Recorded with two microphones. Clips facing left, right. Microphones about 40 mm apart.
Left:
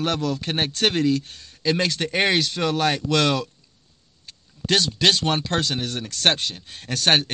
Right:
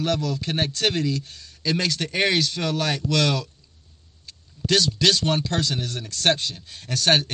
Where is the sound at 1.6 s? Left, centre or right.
Left.